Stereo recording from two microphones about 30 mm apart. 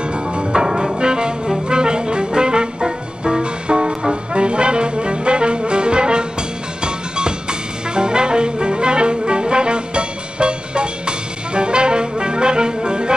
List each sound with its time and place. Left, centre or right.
0.5 s music: right
7.9 s brass instrument: right